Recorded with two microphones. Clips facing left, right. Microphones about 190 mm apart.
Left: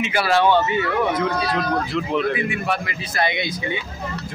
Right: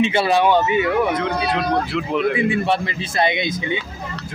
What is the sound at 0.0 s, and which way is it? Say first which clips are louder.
Speech: right 2 dB; 25° right (ahead or behind).